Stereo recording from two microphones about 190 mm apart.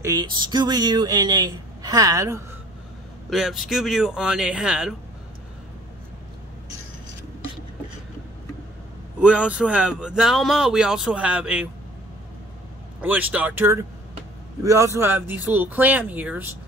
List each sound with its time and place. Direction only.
0.0 s speech: 20° right (ahead or behind)
3.3 s speech: centre (ahead or behind)
9.2 s speech: 5° right (ahead or behind)
13.0 s speech: 10° right (ahead or behind)